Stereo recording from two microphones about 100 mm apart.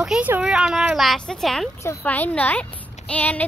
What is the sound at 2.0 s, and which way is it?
Speech, 15° left (ahead or behind).